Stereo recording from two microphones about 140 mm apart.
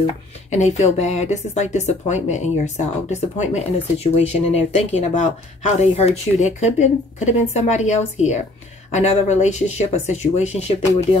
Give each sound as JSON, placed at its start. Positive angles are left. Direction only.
{"t": 0.0, "sound": "speech", "side_deg": 55}